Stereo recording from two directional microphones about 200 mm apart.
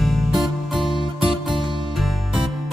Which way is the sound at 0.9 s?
25° right (ahead or behind).